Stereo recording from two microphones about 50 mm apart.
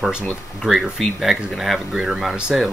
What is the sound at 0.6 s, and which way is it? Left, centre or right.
Speech, centre.